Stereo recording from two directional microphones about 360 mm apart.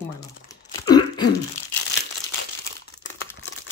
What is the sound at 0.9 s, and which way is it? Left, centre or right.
Throat clearing, centre.